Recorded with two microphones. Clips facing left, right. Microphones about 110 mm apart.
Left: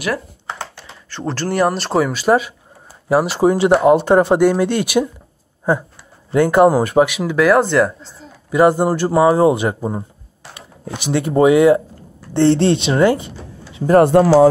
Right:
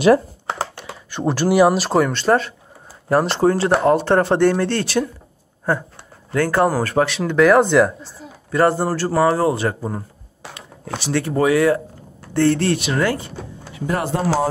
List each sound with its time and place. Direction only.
0.6 s speech: 10° right (ahead or behind)
8.5 s speech: 15° left (ahead or behind)
14.1 s speech: 70° left (ahead or behind)